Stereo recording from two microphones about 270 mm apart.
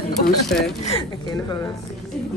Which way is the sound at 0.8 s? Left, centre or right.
Centre.